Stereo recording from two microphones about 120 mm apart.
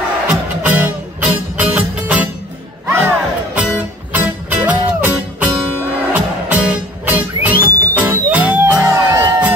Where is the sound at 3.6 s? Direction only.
10° right (ahead or behind).